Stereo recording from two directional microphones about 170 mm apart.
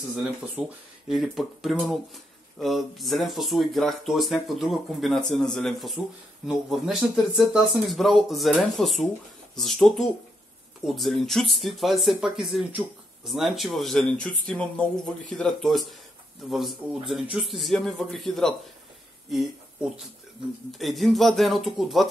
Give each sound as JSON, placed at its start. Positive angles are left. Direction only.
{"t": 0.1, "sound": "speech", "side_deg": -5}
{"t": 20.8, "sound": "speech", "side_deg": 0}